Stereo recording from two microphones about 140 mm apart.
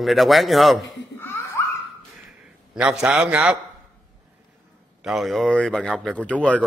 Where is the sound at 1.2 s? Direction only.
20° left (ahead or behind).